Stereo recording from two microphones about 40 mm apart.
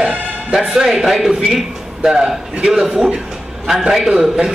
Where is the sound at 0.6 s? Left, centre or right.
Centre.